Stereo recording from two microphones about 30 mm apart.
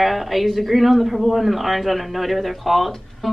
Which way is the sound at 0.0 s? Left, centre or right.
Centre.